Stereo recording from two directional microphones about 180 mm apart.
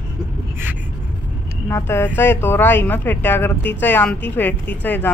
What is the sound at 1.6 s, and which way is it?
A woman's voice, 15° left (ahead or behind).